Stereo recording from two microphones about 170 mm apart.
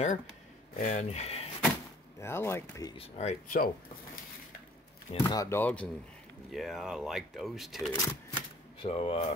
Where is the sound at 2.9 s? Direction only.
40° left (ahead or behind).